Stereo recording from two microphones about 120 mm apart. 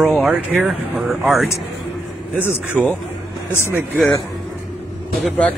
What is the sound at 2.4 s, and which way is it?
Speech, 20° left (ahead or behind).